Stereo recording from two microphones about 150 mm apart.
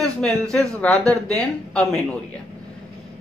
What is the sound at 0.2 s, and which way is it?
Speech, 5° left (ahead or behind).